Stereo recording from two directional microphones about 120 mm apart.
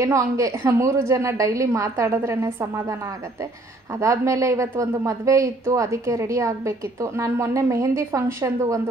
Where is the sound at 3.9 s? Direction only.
25° right (ahead or behind).